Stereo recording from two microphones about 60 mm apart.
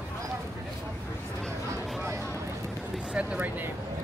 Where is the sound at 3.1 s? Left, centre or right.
Right.